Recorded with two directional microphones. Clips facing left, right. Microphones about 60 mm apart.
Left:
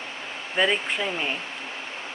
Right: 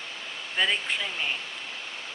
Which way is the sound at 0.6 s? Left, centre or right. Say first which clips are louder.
Left 4 dB; centre.